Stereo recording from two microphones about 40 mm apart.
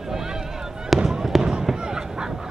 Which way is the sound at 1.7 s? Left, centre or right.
Centre.